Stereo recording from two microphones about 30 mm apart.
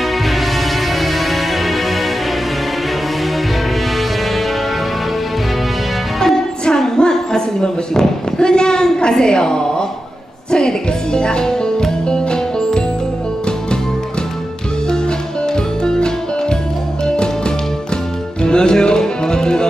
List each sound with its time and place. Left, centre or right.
0.0 s music: centre
6.1 s music: centre
7.0 s a sound: left
10.5 s music: left
14.9 s music: left
18.4 s music: left